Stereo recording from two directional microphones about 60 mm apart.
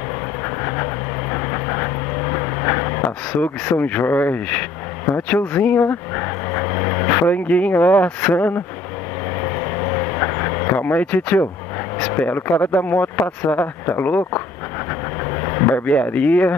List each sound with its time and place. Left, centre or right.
1.3 s vehicle: left
3.7 s speech: left
9.4 s vehicle: left
12.1 s speech: left
15.4 s speech: left